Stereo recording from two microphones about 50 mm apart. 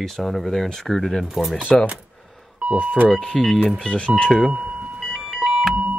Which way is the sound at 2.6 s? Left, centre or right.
Right.